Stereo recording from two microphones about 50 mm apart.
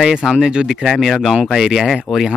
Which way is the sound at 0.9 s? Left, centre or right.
Centre.